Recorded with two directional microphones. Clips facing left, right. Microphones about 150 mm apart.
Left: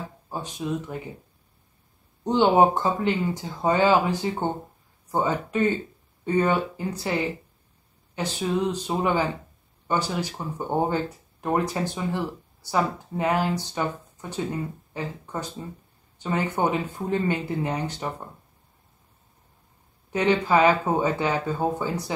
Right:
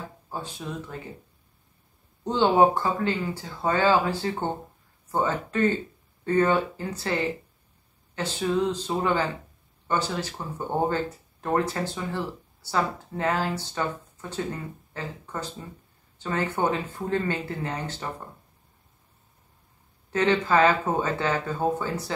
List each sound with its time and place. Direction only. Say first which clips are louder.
0.3 s speech: left 5 dB; 15° left (ahead or behind)
2.2 s speech: left 1 dB; 15° left (ahead or behind)
20.1 s speech: left 1 dB; 15° left (ahead or behind)